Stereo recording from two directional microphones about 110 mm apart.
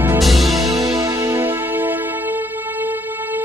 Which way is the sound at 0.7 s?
30° right (ahead or behind).